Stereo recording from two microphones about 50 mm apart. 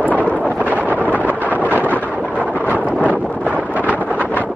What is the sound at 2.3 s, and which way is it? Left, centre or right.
Vehicle, right.